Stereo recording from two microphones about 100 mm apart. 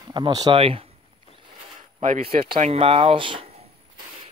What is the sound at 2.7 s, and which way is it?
Speech, 70° right (ahead or behind).